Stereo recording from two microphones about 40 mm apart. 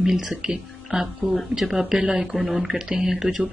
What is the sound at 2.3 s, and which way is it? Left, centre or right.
Speech, centre.